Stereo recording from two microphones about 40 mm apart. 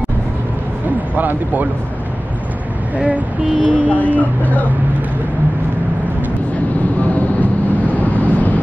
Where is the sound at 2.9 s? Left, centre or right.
Right.